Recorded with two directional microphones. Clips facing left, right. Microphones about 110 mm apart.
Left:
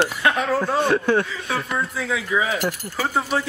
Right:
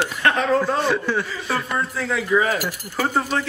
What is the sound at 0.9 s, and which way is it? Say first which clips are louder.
Speech: left 3 dB; 55° left (ahead or behind).